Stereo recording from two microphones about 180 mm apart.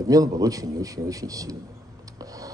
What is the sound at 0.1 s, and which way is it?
Speech, 20° right (ahead or behind).